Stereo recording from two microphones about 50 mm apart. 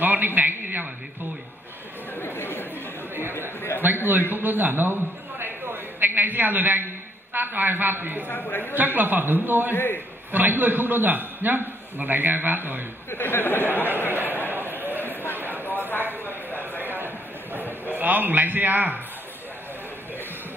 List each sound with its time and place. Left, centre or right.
0.0 s a man's voice: right
2.1 s chatter: left
3.8 s a man's voice: right
8.3 s a woman's voice: left
8.7 s a man's voice: right
13.1 s speech: left
13.9 s speech: right
14.5 s a sound: right
16.8 s a sound: right
17.9 s a man's voice: right